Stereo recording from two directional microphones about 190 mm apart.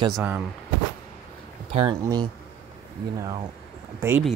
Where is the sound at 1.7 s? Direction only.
30° right (ahead or behind).